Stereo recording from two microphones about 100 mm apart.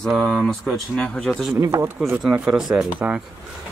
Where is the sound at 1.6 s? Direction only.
35° right (ahead or behind).